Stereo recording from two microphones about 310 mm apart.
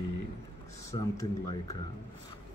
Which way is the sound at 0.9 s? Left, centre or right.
Centre.